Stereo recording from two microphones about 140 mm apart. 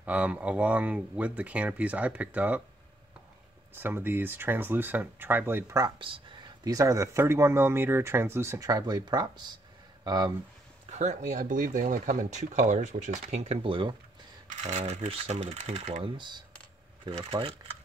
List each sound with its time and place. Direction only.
0.0 s speech: 10° right (ahead or behind)
3.7 s speech: 15° right (ahead or behind)
5.9 s speech: 35° right (ahead or behind)
10.9 s speech: 60° right (ahead or behind); by 13.9 s 40° right (ahead or behind)
14.6 s speech: 55° right (ahead or behind)
16.0 s speech: 30° right (ahead or behind)